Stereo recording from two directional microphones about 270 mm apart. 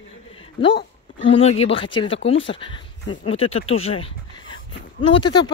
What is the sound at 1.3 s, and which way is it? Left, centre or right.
Speech, left.